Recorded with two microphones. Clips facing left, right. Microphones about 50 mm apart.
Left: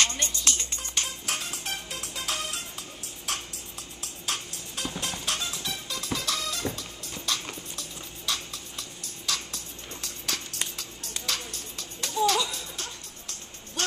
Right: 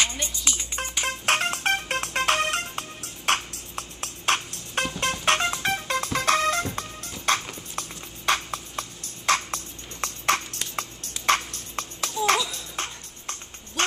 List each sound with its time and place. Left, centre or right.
0.0 s music: centre
1.0 s music: right
3.3 s a sound: right
5.2 s music: right
7.3 s clip-clop: right
8.3 s music: right